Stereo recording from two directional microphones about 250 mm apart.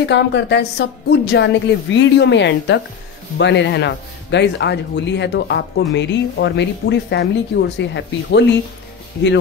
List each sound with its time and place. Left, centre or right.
0.0 s a man's voice: left